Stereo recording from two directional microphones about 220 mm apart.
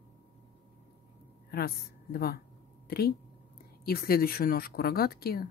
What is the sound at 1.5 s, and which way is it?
Speech, 45° left (ahead or behind).